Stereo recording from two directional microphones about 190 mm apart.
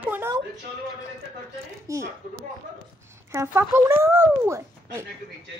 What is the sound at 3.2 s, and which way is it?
Speech, 15° right (ahead or behind).